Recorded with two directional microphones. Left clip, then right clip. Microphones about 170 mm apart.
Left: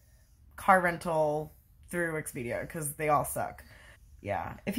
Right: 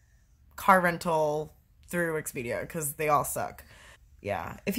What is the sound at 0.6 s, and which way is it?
A woman's voice, 15° right (ahead or behind).